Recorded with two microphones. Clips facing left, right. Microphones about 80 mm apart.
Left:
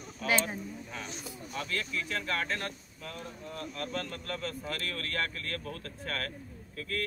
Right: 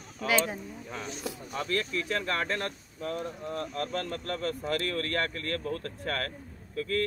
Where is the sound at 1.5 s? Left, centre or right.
Right.